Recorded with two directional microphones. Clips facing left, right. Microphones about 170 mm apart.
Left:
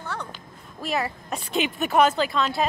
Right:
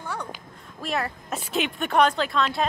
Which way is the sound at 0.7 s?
Centre (ahead or behind).